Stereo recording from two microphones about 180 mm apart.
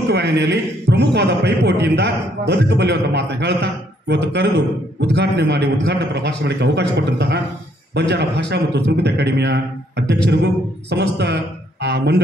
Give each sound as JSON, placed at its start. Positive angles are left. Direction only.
{"t": 0.1, "sound": "a man's voice", "side_deg": -70}